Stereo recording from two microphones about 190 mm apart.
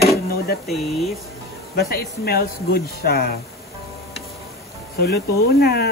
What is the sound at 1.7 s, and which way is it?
Speech, 55° left (ahead or behind).